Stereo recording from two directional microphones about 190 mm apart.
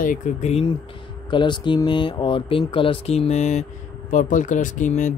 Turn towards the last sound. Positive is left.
turn(degrees=40)  # may be behind; listen again after turning